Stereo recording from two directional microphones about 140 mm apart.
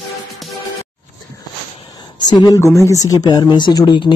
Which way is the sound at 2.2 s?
30° left (ahead or behind).